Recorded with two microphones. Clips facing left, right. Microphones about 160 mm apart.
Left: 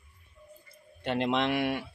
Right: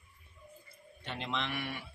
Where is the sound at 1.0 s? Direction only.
70° left (ahead or behind).